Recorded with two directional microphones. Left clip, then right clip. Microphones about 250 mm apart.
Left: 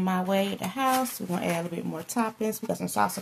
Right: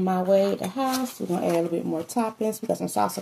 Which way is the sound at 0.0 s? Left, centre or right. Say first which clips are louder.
Right 6 dB; left.